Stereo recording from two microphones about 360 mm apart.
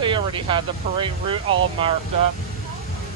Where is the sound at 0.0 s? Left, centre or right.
Centre.